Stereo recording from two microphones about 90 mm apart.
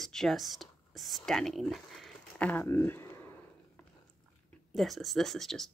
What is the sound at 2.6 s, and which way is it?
Speech, 25° left (ahead or behind).